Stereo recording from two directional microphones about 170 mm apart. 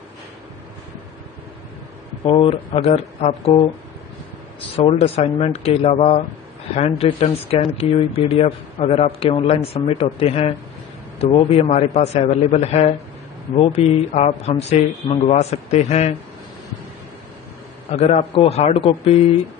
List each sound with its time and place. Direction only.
2.3 s speech: 35° left (ahead or behind)
4.7 s speech: 35° left (ahead or behind)
17.9 s speech: 35° left (ahead or behind)